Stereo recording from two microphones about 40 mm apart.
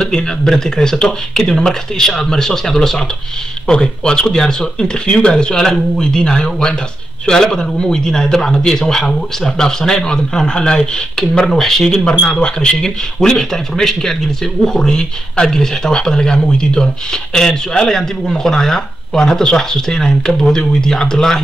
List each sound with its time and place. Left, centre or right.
0.0 s speech: centre
3.6 s speech: left
12.0 s speech: left